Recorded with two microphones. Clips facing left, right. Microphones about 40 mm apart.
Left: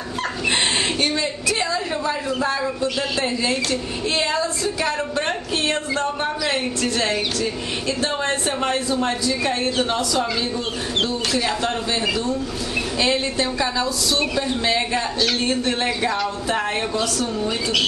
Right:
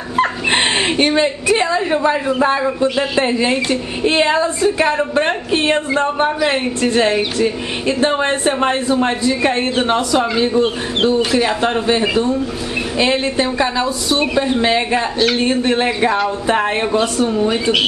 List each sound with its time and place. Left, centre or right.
0.2 s speech: right